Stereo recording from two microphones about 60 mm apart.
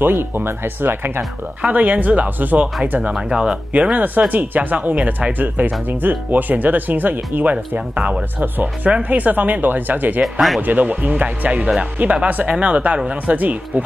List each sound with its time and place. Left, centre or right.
0.0 s speech: right; by 3.9 s centre
3.9 s speech: right
13.4 s speech: right